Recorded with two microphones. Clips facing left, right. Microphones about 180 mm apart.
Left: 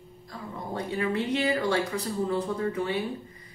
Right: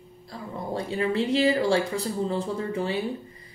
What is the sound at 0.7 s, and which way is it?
Speech, 30° right (ahead or behind).